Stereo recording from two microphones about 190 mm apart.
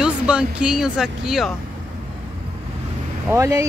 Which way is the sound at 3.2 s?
15° right (ahead or behind).